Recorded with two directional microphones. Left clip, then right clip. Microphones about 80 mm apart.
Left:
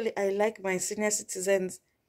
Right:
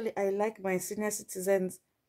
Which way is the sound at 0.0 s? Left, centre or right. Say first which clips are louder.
Left 3 dB; right.